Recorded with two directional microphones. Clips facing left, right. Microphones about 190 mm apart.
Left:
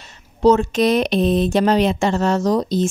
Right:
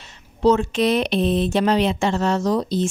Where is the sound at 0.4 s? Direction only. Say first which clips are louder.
Left 3 dB; 40° left (ahead or behind).